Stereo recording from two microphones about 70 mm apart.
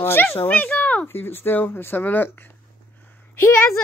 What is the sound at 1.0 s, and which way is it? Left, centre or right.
Speech, left.